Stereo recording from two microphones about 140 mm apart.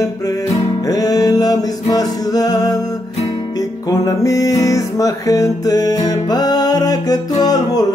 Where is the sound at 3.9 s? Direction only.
25° left (ahead or behind).